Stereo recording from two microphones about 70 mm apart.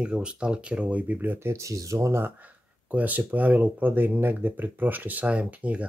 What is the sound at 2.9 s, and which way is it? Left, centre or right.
Speech, right.